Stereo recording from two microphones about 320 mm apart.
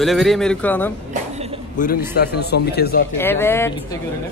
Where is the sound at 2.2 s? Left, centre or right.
Left.